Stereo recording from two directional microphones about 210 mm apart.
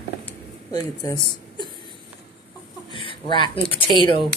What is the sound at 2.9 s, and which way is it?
Speech, 25° left (ahead or behind).